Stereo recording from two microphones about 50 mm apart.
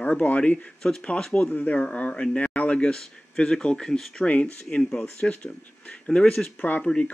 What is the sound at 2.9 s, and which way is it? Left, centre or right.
Speech, centre.